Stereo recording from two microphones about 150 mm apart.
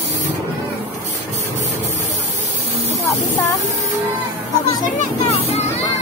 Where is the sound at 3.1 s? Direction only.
20° left (ahead or behind).